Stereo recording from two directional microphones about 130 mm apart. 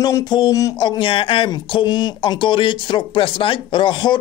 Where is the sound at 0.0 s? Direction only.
30° left (ahead or behind).